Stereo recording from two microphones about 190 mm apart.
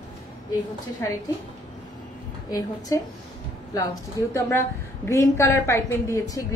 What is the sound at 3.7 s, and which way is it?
A woman's voice, 20° left (ahead or behind).